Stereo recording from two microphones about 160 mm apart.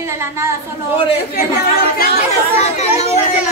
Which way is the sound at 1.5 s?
75° left (ahead or behind).